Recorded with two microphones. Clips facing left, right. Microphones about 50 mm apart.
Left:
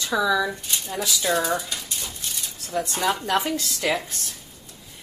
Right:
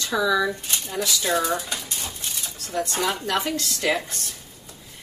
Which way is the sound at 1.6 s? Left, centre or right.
Right.